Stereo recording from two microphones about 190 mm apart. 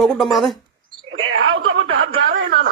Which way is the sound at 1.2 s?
90° right.